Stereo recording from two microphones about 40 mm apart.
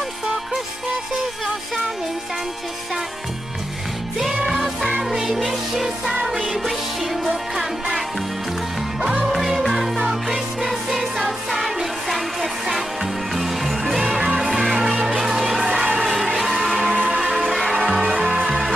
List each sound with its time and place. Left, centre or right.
4.5 s music: centre
9.2 s music: centre
18.0 s music: centre